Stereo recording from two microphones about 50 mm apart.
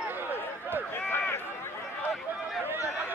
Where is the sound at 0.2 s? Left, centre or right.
Right.